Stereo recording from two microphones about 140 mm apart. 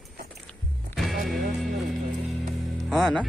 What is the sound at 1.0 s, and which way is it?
Music, centre (ahead or behind).